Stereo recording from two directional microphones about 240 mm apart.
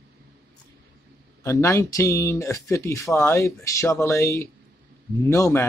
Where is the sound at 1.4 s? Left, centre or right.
Centre.